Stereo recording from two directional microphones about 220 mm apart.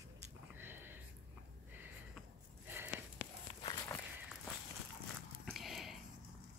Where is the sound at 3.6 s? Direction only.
20° left (ahead or behind).